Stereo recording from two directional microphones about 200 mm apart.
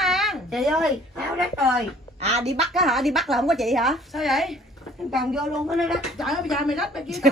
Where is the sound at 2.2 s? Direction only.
30° right (ahead or behind).